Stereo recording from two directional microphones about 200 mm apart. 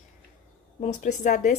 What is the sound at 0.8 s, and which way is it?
Speech, 40° left (ahead or behind).